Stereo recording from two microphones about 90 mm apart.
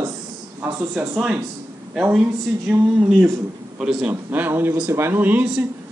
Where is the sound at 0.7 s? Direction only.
15° right (ahead or behind).